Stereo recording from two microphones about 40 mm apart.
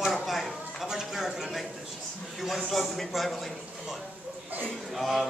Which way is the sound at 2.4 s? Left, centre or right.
Centre.